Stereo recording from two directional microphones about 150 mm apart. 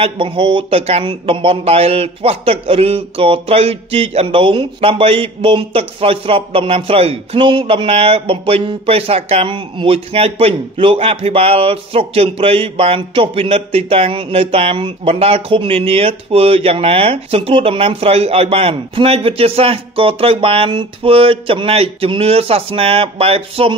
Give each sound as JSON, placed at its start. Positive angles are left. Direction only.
{"t": 0.0, "sound": "speech", "side_deg": -35}